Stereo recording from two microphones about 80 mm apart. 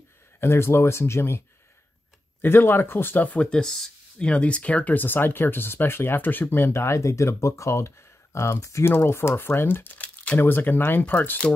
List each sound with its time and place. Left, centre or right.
0.4 s speech: left
2.4 s speech: left